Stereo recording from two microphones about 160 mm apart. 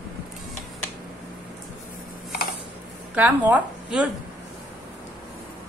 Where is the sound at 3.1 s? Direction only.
10° right (ahead or behind).